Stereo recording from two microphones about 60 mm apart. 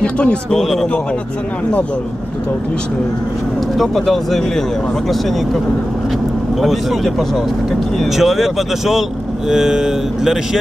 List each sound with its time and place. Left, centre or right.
0.0 s a man's voice: centre
3.7 s speech: centre
6.6 s speech: centre